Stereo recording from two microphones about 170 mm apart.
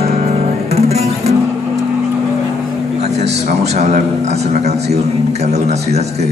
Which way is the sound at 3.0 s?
40° right (ahead or behind).